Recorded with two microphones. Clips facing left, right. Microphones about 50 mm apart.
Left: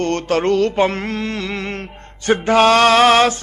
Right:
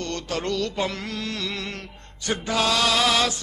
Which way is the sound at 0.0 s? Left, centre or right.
Left.